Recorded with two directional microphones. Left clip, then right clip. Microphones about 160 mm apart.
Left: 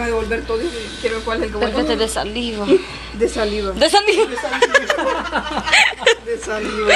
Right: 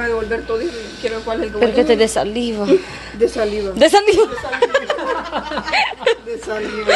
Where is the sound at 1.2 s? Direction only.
Centre (ahead or behind).